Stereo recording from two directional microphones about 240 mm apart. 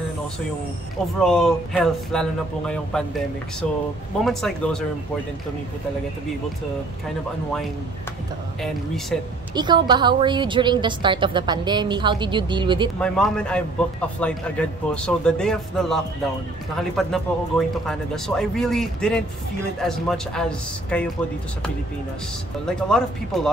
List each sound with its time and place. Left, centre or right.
1.2 s speech: centre
4.2 s speech: centre
9.5 s a woman's voice: centre
13.0 s speech: centre
22.7 s speech: centre